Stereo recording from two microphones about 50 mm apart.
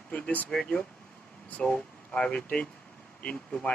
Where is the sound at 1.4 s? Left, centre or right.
Left.